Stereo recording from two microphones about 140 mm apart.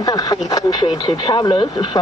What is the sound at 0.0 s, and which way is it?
Speech, 25° left (ahead or behind).